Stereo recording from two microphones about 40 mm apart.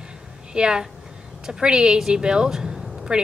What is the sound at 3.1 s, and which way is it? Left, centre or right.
Speech, right.